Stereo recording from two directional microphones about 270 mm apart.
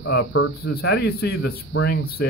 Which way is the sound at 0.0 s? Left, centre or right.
Left.